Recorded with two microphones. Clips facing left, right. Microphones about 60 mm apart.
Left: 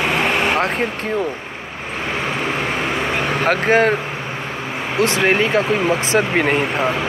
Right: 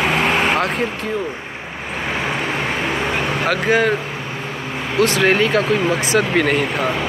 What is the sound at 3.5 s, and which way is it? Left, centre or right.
Speech, left.